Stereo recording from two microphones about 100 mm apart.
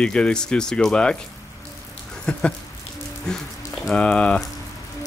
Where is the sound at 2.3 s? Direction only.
10° left (ahead or behind).